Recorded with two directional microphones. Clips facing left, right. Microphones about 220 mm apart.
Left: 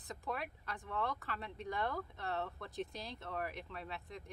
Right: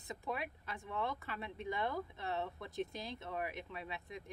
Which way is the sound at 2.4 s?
20° right (ahead or behind).